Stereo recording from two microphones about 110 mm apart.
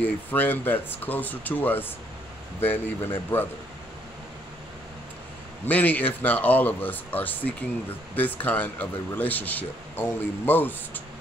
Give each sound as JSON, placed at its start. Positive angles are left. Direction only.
{"t": 0.0, "sound": "speech", "side_deg": 15}
{"t": 5.7, "sound": "speech", "side_deg": 15}